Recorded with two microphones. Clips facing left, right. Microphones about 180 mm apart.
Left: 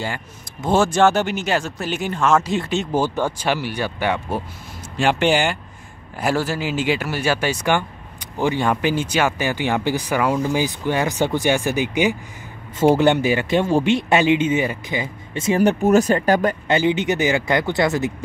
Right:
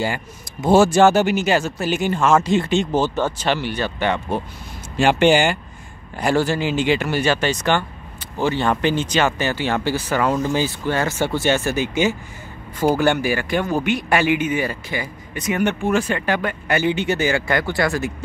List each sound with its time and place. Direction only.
0.0 s speech: 10° right (ahead or behind); by 16.5 s 40° left (ahead or behind)
16.6 s speech: 20° left (ahead or behind)